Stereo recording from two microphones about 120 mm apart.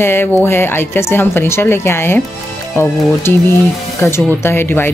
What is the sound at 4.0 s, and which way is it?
Speech, 20° left (ahead or behind).